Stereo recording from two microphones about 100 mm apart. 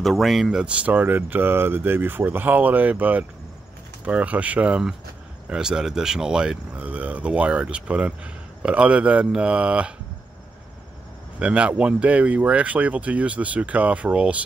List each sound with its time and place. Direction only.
0.0 s speech: centre (ahead or behind)
11.3 s speech: 15° right (ahead or behind)